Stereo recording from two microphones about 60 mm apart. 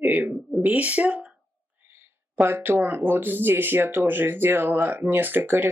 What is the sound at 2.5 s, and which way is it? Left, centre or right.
Speech, right.